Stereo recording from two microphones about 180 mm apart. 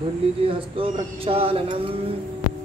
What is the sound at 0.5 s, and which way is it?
Speech, 30° right (ahead or behind).